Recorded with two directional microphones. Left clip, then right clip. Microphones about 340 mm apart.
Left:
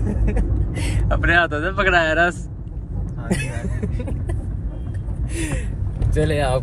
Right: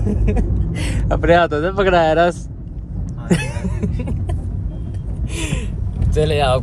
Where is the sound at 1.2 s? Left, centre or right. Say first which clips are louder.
Right 4 dB; centre.